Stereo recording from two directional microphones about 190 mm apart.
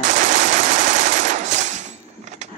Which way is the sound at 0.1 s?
40° right (ahead or behind).